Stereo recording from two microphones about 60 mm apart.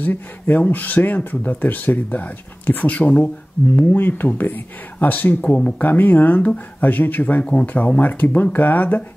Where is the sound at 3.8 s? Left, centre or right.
Left.